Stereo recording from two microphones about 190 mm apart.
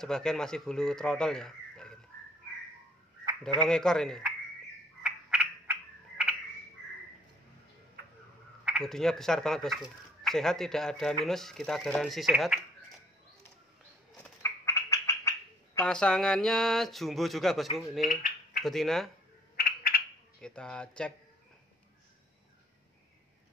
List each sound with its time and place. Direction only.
0.0 s speech: 5° left (ahead or behind)
3.3 s a sound: 25° right (ahead or behind)
3.6 s speech: 5° left (ahead or behind)
5.0 s frog: 5° right (ahead or behind)
8.6 s speech: centre (ahead or behind)
14.1 s a sound: 10° left (ahead or behind)
15.8 s speech: 5° left (ahead or behind)
18.0 s a sound: 45° left (ahead or behind)
18.6 s speech: centre (ahead or behind)
19.5 s bird: 50° left (ahead or behind)
20.3 s speech: 5° left (ahead or behind)